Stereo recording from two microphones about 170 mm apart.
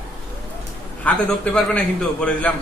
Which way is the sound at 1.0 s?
5° left (ahead or behind).